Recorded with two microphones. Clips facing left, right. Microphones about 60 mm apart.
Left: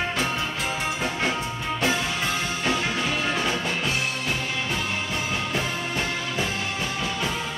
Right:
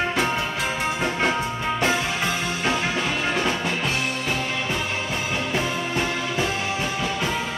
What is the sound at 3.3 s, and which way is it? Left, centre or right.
Music, centre.